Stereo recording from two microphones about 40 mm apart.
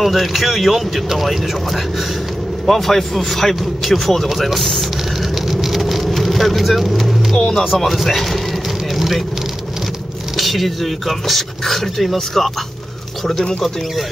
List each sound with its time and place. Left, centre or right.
0.0 s speech: centre
5.3 s vehicle: centre
7.3 s music: centre
7.8 s speech: centre
8.9 s vehicle: centre
10.3 s speech: centre